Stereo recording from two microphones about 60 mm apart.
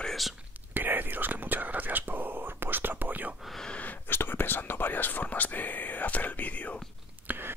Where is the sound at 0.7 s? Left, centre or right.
Right.